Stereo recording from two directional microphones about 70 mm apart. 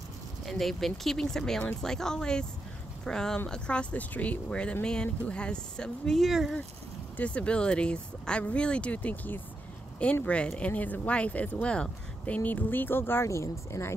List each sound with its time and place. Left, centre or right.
0.5 s speech: centre
7.2 s speech: centre
12.4 s speech: left